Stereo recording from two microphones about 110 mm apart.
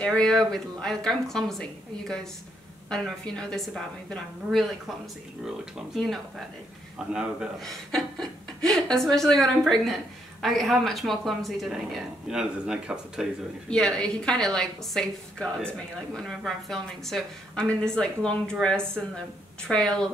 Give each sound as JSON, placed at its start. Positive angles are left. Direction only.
{"t": 0.0, "sound": "a woman's voice", "side_deg": 5}
{"t": 5.9, "sound": "a woman's voice", "side_deg": 0}
{"t": 7.6, "sound": "a woman's voice", "side_deg": 5}
{"t": 13.7, "sound": "a woman's voice", "side_deg": 10}